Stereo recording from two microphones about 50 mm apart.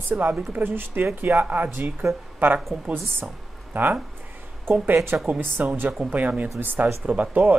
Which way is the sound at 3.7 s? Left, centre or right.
Right.